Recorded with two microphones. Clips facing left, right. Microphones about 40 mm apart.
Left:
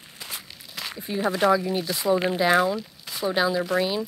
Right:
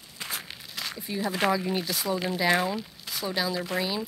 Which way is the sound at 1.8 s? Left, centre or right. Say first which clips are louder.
Left 6 dB; centre.